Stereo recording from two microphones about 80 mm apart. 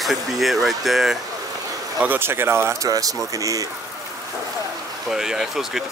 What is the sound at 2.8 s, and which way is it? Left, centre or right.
Speech, right.